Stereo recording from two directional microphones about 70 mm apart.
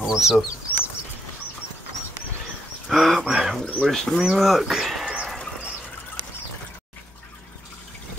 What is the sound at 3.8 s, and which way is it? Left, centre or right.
Speech, centre.